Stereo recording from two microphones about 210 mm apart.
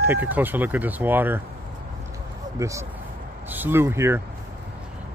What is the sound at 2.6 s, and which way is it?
Speech, 15° right (ahead or behind).